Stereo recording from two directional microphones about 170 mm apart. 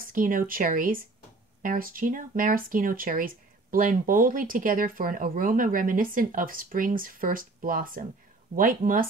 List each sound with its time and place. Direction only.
0.0 s speech: 55° right (ahead or behind)